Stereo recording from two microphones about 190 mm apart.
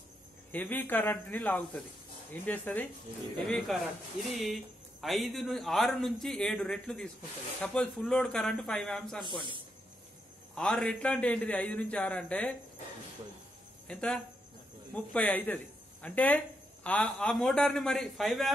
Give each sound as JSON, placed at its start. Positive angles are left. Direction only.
{"t": 0.5, "sound": "a man's voice", "side_deg": 10}
{"t": 9.2, "sound": "speech", "side_deg": -25}
{"t": 10.5, "sound": "a man's voice", "side_deg": 5}
{"t": 13.8, "sound": "speech", "side_deg": 5}